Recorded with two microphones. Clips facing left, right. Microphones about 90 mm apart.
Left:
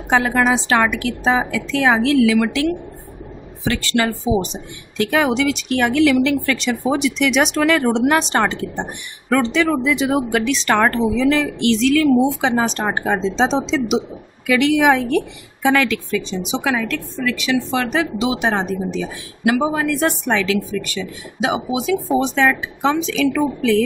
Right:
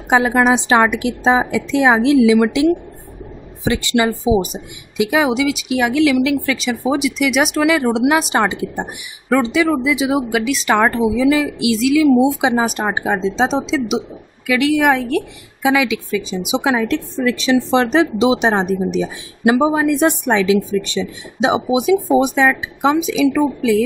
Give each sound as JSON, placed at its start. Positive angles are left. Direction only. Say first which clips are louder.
{"t": 0.1, "sound": "a woman's voice", "louder": "right 3 dB", "side_deg": -15}
{"t": 4.2, "sound": "speech", "louder": "right 3 dB", "side_deg": -5}
{"t": 16.6, "sound": "a woman's voice", "louder": "right 5 dB", "side_deg": -20}